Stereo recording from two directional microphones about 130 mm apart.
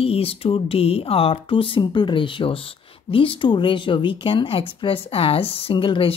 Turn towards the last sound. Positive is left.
turn(degrees=40)  # may be behind; listen again after turning